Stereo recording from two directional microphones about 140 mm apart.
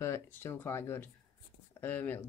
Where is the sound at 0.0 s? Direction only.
20° left (ahead or behind).